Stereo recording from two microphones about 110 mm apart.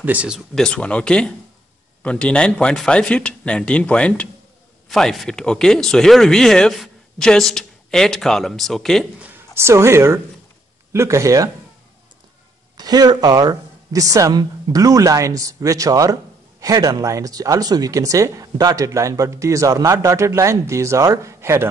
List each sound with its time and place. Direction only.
0.0 s speech: 15° right (ahead or behind)
0.6 s a man's voice: 5° left (ahead or behind)
9.2 s speech: 20° right (ahead or behind)
12.7 s speech: 35° right (ahead or behind)